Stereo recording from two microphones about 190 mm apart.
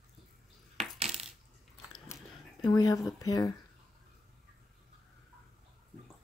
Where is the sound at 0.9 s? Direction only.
35° right (ahead or behind).